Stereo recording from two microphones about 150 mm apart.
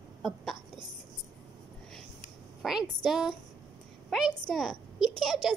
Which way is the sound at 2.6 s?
Centre (ahead or behind).